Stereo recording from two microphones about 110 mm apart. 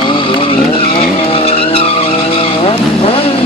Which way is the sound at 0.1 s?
55° left (ahead or behind).